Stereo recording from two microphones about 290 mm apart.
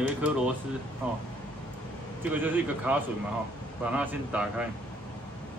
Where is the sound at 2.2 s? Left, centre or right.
Centre.